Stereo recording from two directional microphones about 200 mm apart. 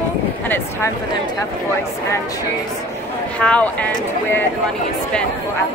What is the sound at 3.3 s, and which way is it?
Speech, 5° left (ahead or behind).